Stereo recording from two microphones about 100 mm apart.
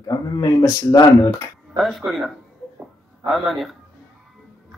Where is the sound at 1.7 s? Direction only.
Centre (ahead or behind).